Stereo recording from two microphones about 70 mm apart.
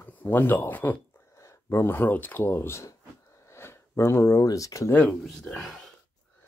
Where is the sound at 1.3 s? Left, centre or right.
Left.